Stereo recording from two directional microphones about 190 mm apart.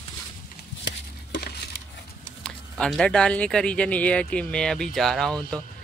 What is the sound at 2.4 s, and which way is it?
Speech, centre (ahead or behind).